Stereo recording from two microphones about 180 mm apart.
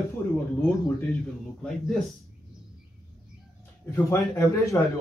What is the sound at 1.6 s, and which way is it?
Speech, centre (ahead or behind).